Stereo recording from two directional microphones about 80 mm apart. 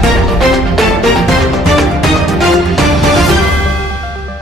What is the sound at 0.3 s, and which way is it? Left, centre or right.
Music, centre.